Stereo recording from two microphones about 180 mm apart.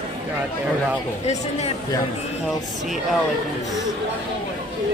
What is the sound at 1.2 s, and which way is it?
Speech, 40° left (ahead or behind).